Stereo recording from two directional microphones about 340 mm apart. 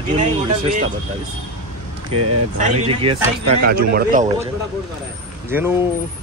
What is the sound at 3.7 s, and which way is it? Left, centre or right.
Speech, right.